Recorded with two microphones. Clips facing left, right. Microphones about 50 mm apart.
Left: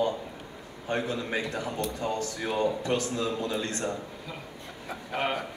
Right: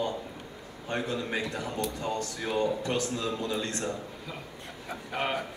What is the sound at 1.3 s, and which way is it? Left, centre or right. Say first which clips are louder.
Speech: left 1 dB; centre.